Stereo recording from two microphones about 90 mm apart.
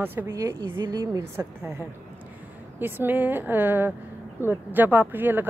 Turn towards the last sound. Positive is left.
turn(degrees=-20)  # may be behind; listen again after turning